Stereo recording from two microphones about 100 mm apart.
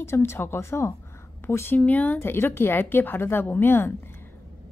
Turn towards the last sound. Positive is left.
turn(degrees=20)  # may be behind; listen again after turning